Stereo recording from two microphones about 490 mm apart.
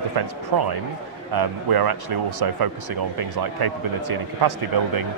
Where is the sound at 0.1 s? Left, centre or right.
Right.